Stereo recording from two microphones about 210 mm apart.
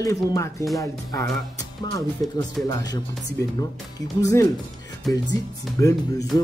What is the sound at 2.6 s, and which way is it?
Speech, 20° left (ahead or behind).